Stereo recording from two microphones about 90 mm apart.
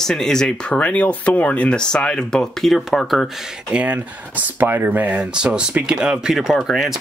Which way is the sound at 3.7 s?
15° right (ahead or behind).